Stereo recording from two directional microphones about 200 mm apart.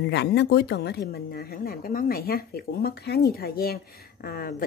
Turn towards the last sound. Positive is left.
turn(degrees=50)  # may be behind; listen again after turning